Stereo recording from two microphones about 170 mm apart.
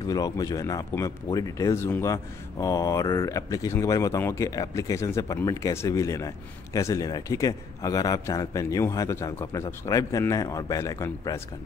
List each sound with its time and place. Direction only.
0.0 s speech: 20° left (ahead or behind)